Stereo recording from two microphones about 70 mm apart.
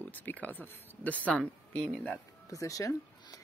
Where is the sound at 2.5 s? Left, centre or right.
Left.